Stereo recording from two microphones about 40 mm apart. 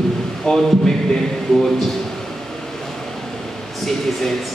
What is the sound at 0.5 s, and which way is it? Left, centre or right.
Speech, centre.